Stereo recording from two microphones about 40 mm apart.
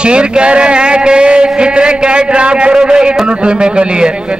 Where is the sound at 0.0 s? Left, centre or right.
Right.